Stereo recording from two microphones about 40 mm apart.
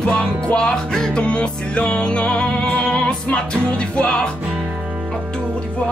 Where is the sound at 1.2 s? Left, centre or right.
Left.